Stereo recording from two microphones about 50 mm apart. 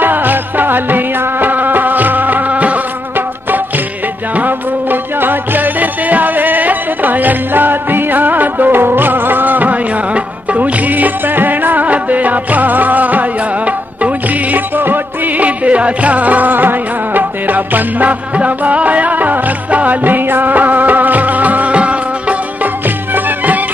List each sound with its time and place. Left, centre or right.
0.0 s music: right
4.4 s music: right